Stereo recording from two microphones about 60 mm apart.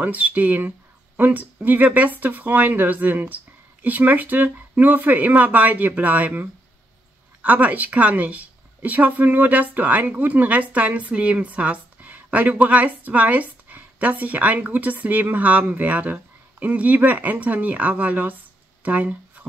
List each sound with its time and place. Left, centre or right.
0.0 s speech: right
7.4 s speech: right